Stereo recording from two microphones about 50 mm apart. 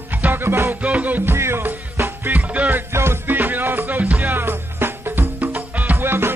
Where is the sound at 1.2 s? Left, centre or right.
Right.